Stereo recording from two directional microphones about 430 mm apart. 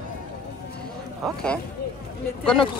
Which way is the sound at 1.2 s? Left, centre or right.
Centre.